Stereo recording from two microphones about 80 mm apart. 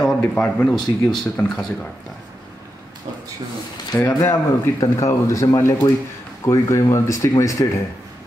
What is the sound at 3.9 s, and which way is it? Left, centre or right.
Speech, left.